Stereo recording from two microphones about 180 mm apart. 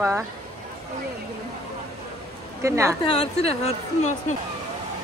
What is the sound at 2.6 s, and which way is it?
Speech, 15° right (ahead or behind).